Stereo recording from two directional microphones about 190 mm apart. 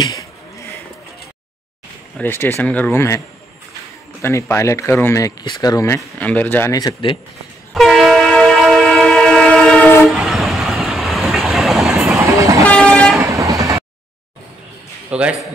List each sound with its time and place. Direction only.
2.1 s speech: 10° left (ahead or behind)
4.2 s speech: 15° left (ahead or behind)
7.7 s train: centre (ahead or behind)
12.2 s train: 15° right (ahead or behind)
12.6 s train: 5° left (ahead or behind)
13.2 s vehicle: 15° right (ahead or behind)
15.0 s a man's voice: 5° right (ahead or behind)